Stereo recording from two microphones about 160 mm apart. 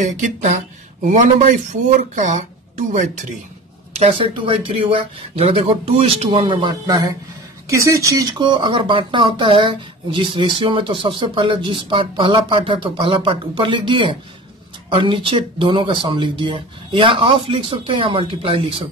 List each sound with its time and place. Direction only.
0.0 s speech: 50° right (ahead or behind)
3.9 s speech: 35° right (ahead or behind)